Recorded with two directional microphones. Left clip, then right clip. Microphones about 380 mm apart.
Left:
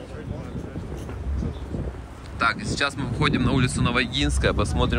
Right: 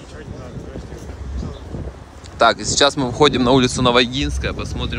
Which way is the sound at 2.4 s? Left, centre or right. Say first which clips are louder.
Right 9 dB; centre.